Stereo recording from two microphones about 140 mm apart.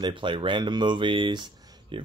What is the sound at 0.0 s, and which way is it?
Speech, 35° right (ahead or behind).